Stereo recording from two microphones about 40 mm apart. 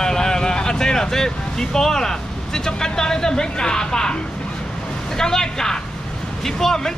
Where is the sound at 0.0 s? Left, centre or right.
Centre.